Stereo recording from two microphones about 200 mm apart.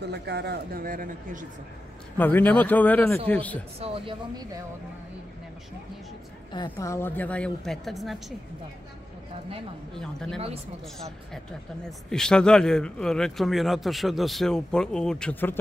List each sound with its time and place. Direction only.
0.0 s speech: 55° right (ahead or behind)
2.1 s speech: 10° left (ahead or behind)
3.8 s speech: 25° right (ahead or behind)
6.5 s speech: 20° left (ahead or behind); by 8.4 s centre (ahead or behind)
12.1 s speech: 5° left (ahead or behind)